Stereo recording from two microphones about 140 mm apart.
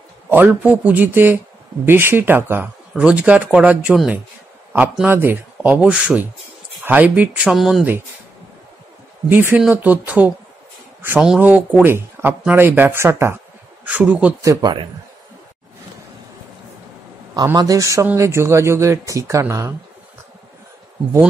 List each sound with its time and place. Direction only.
0.3 s speech: 15° right (ahead or behind)
9.3 s speech: 15° right (ahead or behind)
14.4 s speech: 25° right (ahead or behind)
17.6 s speech: 25° right (ahead or behind)